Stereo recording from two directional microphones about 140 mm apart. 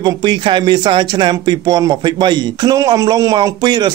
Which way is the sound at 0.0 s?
30° right (ahead or behind).